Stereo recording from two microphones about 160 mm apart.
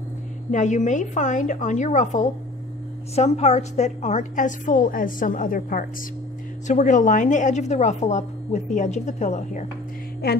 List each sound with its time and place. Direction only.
0.5 s a woman's voice: 50° left (ahead or behind)